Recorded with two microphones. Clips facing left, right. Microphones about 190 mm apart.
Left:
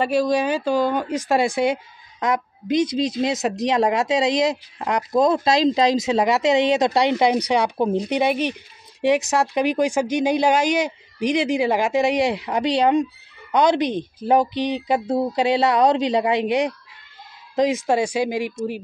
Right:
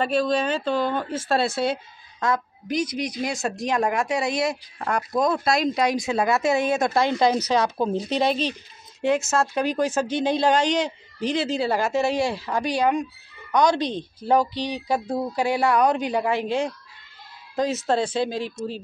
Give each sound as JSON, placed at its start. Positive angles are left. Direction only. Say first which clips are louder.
{"t": 0.0, "sound": "speech", "louder": "left 3 dB", "side_deg": 10}